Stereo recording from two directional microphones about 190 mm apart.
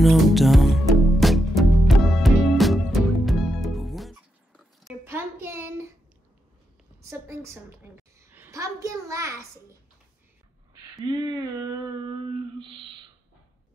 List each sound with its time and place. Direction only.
0.0 s music: centre (ahead or behind)
5.0 s child singing: 10° right (ahead or behind)
7.1 s a woman's voice: 15° right (ahead or behind)
11.1 s a sound: 20° right (ahead or behind)